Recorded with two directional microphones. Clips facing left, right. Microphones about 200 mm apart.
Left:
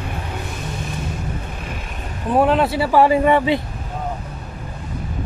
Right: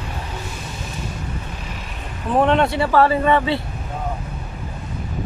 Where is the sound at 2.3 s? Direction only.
5° left (ahead or behind).